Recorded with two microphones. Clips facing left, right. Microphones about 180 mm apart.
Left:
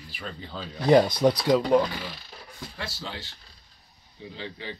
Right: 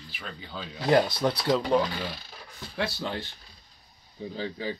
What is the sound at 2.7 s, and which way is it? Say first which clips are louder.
Speech: right 7 dB; 60° right (ahead or behind).